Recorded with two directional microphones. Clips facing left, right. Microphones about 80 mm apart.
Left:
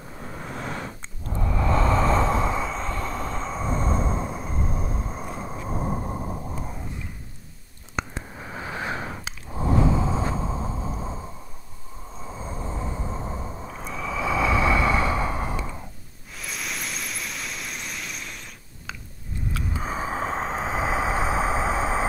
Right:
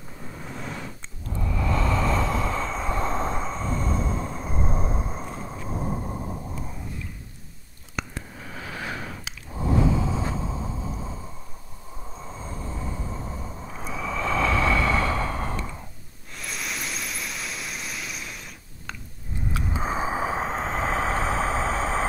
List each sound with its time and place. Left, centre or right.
0.2 s vehicle: left
1.3 s vehicle: left
2.9 s train: right
3.6 s vehicle: left
4.6 s a sound: right
5.2 s vehicle: centre
5.9 s a sound: left
7.9 s a sound: left
12.2 s train: centre
13.7 s snort: centre
16.3 s vehicle: centre
19.5 s a sound: right; by 22.0 s centre